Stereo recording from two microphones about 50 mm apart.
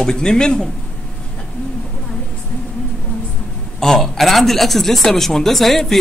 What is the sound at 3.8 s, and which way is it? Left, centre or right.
A woman's voice, centre.